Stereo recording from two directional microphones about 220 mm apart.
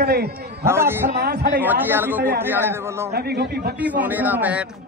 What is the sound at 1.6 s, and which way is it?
A man's voice, 10° right (ahead or behind).